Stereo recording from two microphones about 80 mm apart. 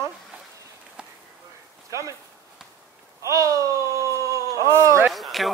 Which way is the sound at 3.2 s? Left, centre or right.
Right.